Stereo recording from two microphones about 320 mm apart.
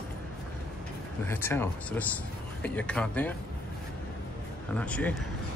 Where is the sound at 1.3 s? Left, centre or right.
Centre.